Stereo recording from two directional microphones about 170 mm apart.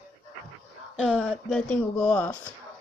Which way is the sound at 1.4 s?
5° left (ahead or behind).